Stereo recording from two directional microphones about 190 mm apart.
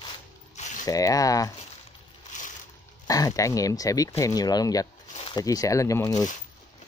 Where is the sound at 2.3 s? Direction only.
40° left (ahead or behind).